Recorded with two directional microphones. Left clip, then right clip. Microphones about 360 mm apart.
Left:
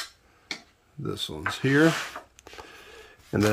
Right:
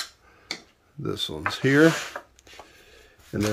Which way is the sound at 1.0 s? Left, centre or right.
Centre.